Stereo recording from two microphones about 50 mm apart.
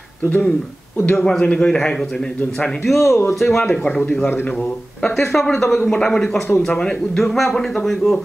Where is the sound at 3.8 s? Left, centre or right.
Left.